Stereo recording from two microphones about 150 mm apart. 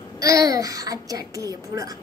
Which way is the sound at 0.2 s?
25° right (ahead or behind).